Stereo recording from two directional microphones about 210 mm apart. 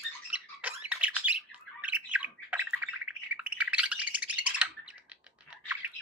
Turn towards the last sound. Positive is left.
turn(degrees=-5)  # may be behind; listen again after turning